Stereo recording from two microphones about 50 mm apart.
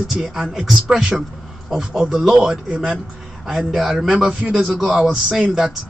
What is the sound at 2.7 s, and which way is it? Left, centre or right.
Speech, right.